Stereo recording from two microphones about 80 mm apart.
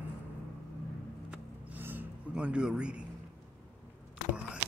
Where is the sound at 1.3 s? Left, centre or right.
Right.